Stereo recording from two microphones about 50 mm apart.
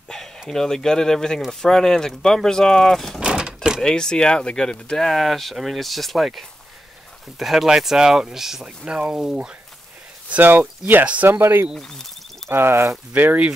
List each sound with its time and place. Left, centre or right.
0.5 s speech: centre
3.2 s a sound: right
3.8 s speech: centre
8.8 s speech: right
10.4 s speech: right
11.2 s speech: right
11.7 s speech: centre
12.4 s speech: right
13.1 s speech: right